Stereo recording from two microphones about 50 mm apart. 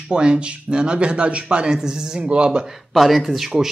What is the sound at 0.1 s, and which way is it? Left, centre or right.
Speech, centre.